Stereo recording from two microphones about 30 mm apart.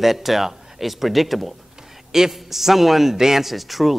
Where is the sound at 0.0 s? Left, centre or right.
Centre.